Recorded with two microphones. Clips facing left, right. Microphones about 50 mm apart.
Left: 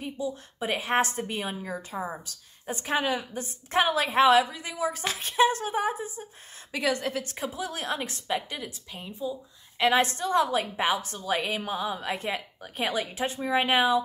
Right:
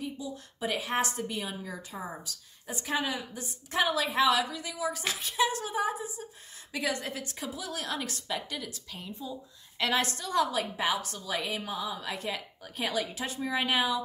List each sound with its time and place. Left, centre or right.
0.0 s a woman's voice: left
6.7 s a woman's voice: left
7.3 s a woman's voice: left